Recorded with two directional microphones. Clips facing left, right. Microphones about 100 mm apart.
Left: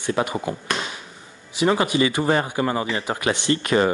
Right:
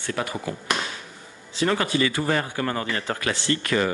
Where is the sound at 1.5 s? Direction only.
15° left (ahead or behind).